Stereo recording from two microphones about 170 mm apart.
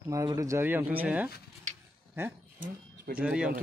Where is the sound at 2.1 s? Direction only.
15° right (ahead or behind).